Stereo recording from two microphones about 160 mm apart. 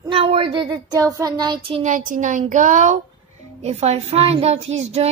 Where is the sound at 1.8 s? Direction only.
55° right (ahead or behind).